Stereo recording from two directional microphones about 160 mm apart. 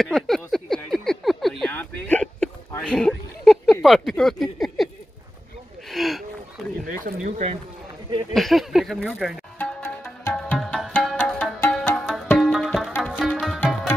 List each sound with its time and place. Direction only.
0.0 s a sound: centre (ahead or behind)
1.7 s hiccup: 10° left (ahead or behind)
2.8 s a sound: 5° left (ahead or behind)
3.8 s speech: centre (ahead or behind)
5.9 s a sound: centre (ahead or behind)
7.2 s speech: 45° right (ahead or behind)
8.1 s speech: 30° right (ahead or behind)
8.4 s speech: centre (ahead or behind)
9.6 s music: 10° left (ahead or behind)
12.4 s tabla: centre (ahead or behind)
12.9 s music: 10° left (ahead or behind)
13.2 s tabla: centre (ahead or behind)